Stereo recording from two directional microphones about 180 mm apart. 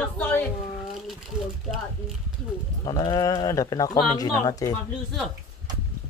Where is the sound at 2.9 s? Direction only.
20° left (ahead or behind).